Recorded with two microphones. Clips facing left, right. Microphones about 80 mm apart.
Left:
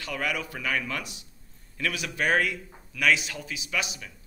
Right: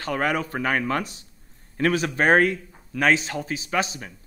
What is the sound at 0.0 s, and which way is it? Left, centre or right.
A man's voice, right.